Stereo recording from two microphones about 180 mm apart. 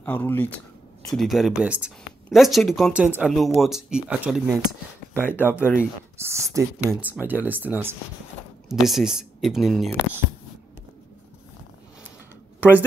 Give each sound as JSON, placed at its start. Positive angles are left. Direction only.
{"t": 0.0, "sound": "speech", "side_deg": 10}
{"t": 1.1, "sound": "speech", "side_deg": 0}
{"t": 5.1, "sound": "speech", "side_deg": 10}
{"t": 6.1, "sound": "speech", "side_deg": -15}
{"t": 12.5, "sound": "a sound", "side_deg": -10}